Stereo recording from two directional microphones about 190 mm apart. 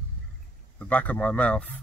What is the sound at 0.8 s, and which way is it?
Speech, 10° left (ahead or behind).